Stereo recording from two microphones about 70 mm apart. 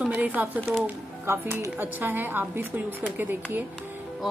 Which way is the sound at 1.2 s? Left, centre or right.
Right.